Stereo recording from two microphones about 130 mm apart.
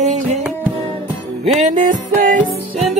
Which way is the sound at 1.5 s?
65° right (ahead or behind).